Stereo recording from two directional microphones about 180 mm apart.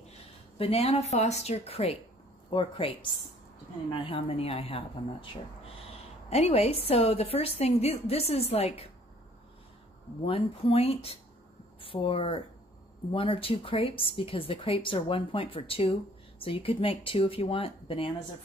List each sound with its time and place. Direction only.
0.6 s speech: 35° left (ahead or behind)
6.3 s speech: 35° left (ahead or behind)
10.2 s speech: 30° left (ahead or behind)